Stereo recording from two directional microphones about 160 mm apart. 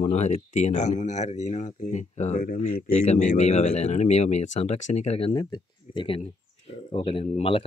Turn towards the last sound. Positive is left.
turn(degrees=35)  # may be behind; listen again after turning